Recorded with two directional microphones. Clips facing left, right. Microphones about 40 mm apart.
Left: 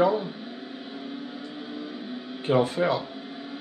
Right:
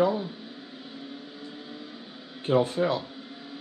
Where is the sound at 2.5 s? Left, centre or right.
Left.